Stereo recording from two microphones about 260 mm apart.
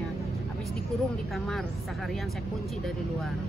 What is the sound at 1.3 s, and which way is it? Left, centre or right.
Speech, centre.